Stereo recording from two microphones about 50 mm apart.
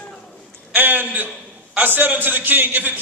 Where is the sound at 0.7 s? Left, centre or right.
Right.